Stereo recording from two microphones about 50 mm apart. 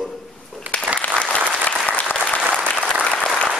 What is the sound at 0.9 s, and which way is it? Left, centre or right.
Applause, right.